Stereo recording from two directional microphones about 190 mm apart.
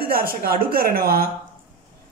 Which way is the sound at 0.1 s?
50° right (ahead or behind).